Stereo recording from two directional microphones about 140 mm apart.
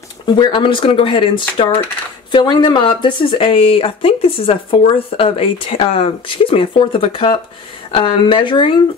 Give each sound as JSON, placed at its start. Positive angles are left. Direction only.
{"t": 0.4, "sound": "speech", "side_deg": 35}